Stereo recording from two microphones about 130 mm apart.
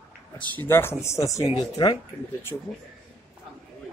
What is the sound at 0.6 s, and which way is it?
Speech, 20° left (ahead or behind).